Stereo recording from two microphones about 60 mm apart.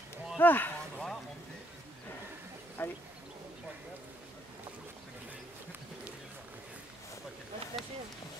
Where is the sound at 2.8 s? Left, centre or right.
Left.